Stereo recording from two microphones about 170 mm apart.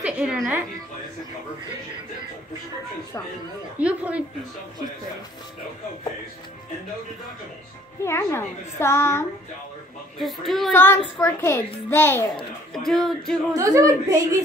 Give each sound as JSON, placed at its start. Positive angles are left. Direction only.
{"t": 0.0, "sound": "a woman's voice", "side_deg": -5}
{"t": 3.8, "sound": "a woman's voice", "side_deg": -10}
{"t": 8.0, "sound": "a woman's voice", "side_deg": 15}
{"t": 10.1, "sound": "speech", "side_deg": 0}
{"t": 10.7, "sound": "a woman's voice", "side_deg": 10}
{"t": 12.7, "sound": "speech", "side_deg": 0}
{"t": 13.5, "sound": "a woman's voice", "side_deg": -20}